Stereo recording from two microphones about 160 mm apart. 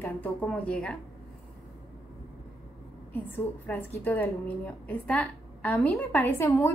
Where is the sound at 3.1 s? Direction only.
10° left (ahead or behind).